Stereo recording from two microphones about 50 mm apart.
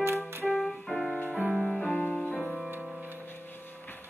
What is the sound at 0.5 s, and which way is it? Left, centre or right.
Keyboard, centre.